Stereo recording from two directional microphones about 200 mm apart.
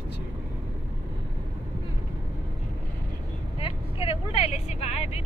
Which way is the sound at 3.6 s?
25° left (ahead or behind).